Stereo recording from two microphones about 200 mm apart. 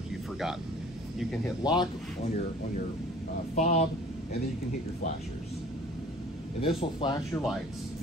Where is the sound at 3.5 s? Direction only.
35° left (ahead or behind).